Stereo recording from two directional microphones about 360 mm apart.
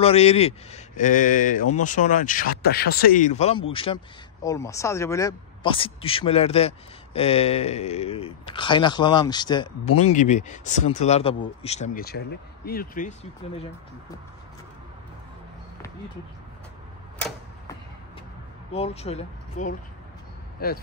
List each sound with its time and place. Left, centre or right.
0.0 s speech: centre
18.7 s speech: centre